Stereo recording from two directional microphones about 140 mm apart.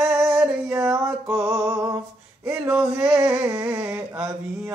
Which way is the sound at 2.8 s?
10° right (ahead or behind).